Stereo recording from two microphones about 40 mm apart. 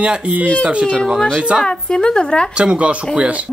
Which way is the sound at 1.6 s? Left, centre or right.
Centre.